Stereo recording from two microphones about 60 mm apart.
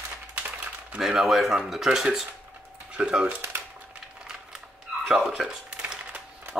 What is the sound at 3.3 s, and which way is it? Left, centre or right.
Speech, right.